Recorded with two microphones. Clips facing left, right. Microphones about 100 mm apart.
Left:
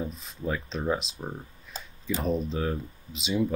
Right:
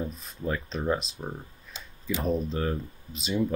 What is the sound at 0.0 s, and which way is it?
Speech, centre (ahead or behind).